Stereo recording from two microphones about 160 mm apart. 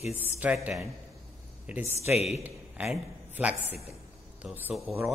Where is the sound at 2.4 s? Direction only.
10° right (ahead or behind).